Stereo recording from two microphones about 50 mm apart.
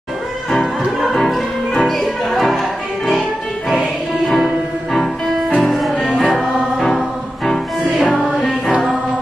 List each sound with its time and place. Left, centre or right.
1.0 s music: centre
4.9 s music: centre